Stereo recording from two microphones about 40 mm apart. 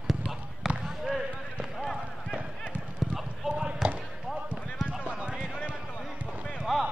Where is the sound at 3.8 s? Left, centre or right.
Centre.